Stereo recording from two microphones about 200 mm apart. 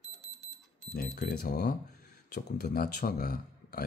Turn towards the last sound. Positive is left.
turn(degrees=50)  # may be behind; listen again after turning